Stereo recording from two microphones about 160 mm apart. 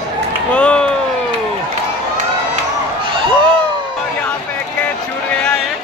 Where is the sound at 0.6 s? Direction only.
5° left (ahead or behind).